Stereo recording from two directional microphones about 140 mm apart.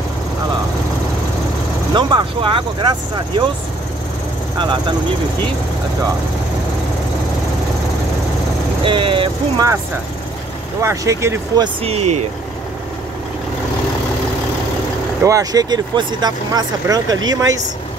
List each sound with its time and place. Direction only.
2.0 s speech: 35° right (ahead or behind)
8.8 s speech: 35° right (ahead or behind)
10.8 s speech: 20° right (ahead or behind)
11.8 s speech: 45° right (ahead or behind)
15.2 s speech: 25° right (ahead or behind)